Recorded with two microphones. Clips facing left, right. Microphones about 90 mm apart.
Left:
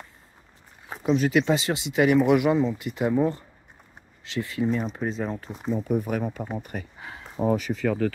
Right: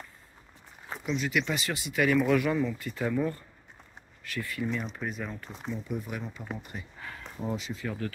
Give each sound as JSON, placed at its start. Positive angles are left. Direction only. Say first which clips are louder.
{"t": 1.0, "sound": "speech", "louder": "left 9 dB", "side_deg": 45}
{"t": 1.3, "sound": "speech", "louder": "left 8 dB", "side_deg": 30}
{"t": 4.6, "sound": "speech", "louder": "left 7 dB", "side_deg": 40}
{"t": 5.7, "sound": "speech", "louder": "left 10 dB", "side_deg": 50}
{"t": 7.0, "sound": "a sound", "louder": "left 2 dB", "side_deg": 20}
{"t": 7.3, "sound": "speech", "louder": "left 11 dB", "side_deg": 65}